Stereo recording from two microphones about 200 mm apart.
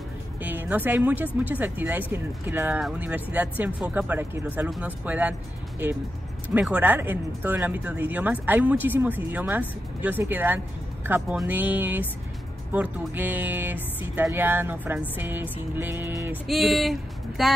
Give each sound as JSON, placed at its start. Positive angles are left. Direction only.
{"t": 0.4, "sound": "speech", "side_deg": -10}
{"t": 6.5, "sound": "speech", "side_deg": -5}
{"t": 16.4, "sound": "speech", "side_deg": 0}